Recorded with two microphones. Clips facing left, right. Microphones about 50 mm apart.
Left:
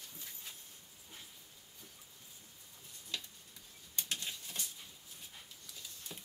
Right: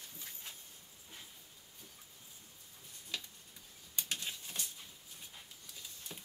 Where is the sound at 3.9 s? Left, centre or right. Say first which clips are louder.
Even; centre.